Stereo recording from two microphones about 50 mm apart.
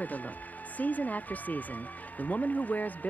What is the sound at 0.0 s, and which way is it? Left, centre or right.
Speech, left.